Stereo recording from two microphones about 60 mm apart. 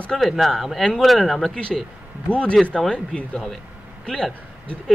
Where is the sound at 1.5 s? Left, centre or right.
Centre.